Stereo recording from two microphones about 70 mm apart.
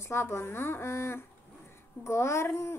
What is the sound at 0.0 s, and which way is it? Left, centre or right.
A child's voice, left.